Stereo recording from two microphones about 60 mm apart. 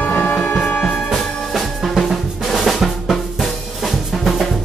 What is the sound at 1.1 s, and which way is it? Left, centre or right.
Drum, centre.